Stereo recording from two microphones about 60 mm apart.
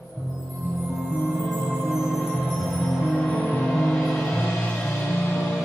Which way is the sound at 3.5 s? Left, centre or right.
Centre.